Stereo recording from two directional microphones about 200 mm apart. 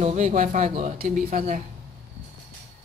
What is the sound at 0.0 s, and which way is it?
Speech, 35° right (ahead or behind).